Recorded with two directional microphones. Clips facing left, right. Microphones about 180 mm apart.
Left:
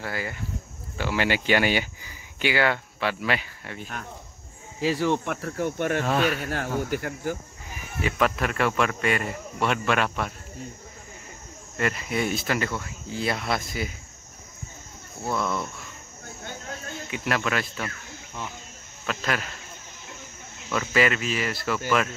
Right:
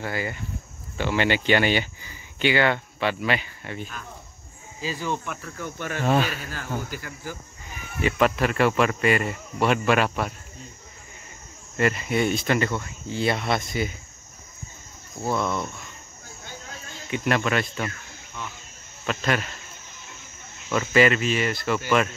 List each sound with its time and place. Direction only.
0.0 s speech: centre (ahead or behind)
4.7 s speech: 75° left (ahead or behind); by 7.3 s 55° left (ahead or behind)
8.0 s speech: centre (ahead or behind)
11.7 s speech: centre (ahead or behind)
15.2 s speech: centre (ahead or behind)
17.1 s speech: centre (ahead or behind)
19.0 s speech: centre (ahead or behind)
20.7 s speech: centre (ahead or behind)